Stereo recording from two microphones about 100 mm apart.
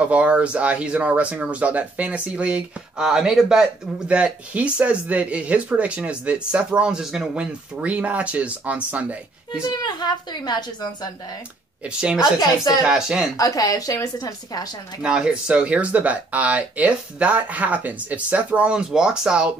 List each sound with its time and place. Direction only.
0.1 s speech: 10° right (ahead or behind)
9.5 s a woman's voice: 45° left (ahead or behind)
12.0 s speech: 10° right (ahead or behind)
12.4 s a woman's voice: 40° left (ahead or behind)
12.8 s speech: 5° right (ahead or behind)
13.4 s a woman's voice: 40° left (ahead or behind)
15.0 s speech: 10° right (ahead or behind)